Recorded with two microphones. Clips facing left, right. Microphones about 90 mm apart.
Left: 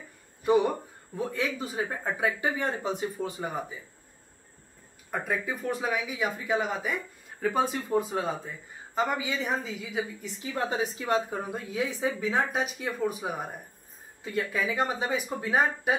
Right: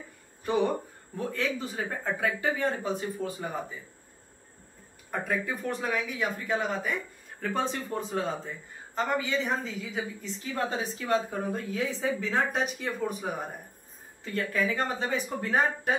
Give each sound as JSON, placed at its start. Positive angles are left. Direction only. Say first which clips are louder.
{"t": 1.1, "sound": "speech", "louder": "even", "side_deg": 15}
{"t": 5.1, "sound": "speech", "louder": "even", "side_deg": 5}